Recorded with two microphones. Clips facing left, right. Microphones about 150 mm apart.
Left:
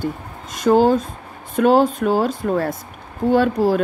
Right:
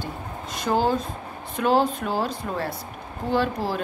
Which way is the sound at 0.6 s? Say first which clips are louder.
Left 8 dB; 50° left (ahead or behind).